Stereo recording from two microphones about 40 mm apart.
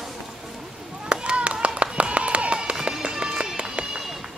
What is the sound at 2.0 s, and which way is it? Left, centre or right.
Music, right.